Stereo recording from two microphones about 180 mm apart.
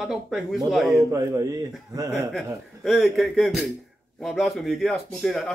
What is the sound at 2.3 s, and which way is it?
Speech, centre (ahead or behind).